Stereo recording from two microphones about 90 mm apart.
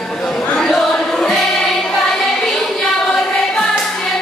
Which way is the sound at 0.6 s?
5° left (ahead or behind).